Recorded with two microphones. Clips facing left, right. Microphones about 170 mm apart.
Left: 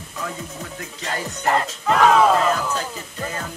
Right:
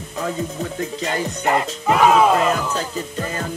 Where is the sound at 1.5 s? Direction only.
10° right (ahead or behind).